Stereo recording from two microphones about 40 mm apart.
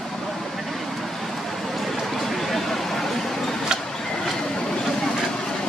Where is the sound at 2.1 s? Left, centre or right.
Centre.